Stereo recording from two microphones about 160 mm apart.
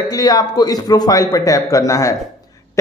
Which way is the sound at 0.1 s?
25° left (ahead or behind).